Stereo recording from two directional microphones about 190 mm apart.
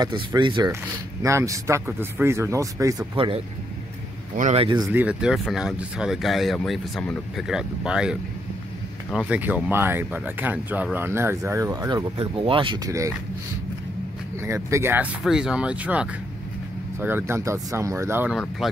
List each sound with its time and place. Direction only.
0.0 s speech: 25° right (ahead or behind)
3.2 s a man's voice: 30° right (ahead or behind)
4.8 s speech: 5° right (ahead or behind)
9.3 s speech: 10° right (ahead or behind)
14.4 s speech: 15° right (ahead or behind)